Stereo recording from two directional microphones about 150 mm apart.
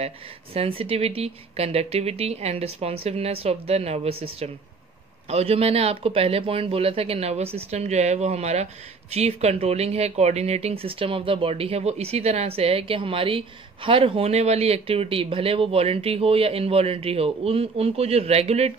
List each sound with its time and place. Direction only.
0.0 s speech: 40° right (ahead or behind)